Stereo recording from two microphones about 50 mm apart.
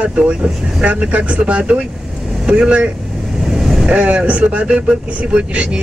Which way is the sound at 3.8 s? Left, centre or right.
Right.